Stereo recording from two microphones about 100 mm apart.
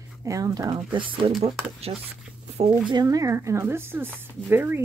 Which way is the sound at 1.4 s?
90° right.